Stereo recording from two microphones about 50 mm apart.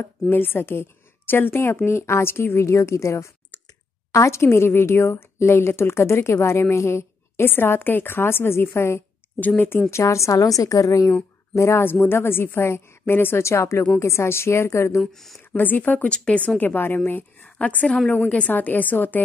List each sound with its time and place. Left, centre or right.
0.0 s a woman's voice: left
1.9 s a woman's voice: left
7.4 s a woman's voice: left
11.5 s speech: left
11.8 s a woman's voice: left
13.4 s a woman's voice: left
15.0 s speech: centre
15.5 s a woman's voice: left